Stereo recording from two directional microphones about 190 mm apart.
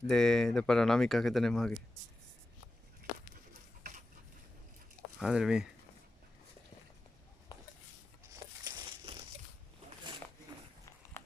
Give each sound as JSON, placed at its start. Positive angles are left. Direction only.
{"t": 0.1, "sound": "speech", "side_deg": 5}
{"t": 5.2, "sound": "speech", "side_deg": -5}
{"t": 8.6, "sound": "crumpling", "side_deg": -25}